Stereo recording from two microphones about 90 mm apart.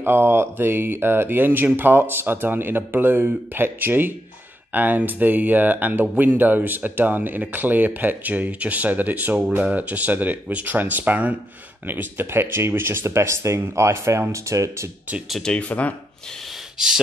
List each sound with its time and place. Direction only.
0.0 s speech: 25° right (ahead or behind)
15.2 s speech: centre (ahead or behind)
15.5 s speech: 15° left (ahead or behind)
16.7 s speech: 5° right (ahead or behind)